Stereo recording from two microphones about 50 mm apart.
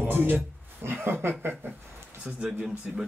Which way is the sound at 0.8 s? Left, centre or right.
Right.